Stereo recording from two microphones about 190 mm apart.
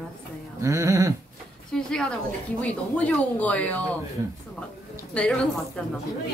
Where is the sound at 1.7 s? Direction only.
5° left (ahead or behind).